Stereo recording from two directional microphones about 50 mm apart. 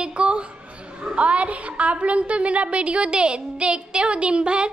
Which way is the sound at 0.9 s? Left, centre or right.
Right.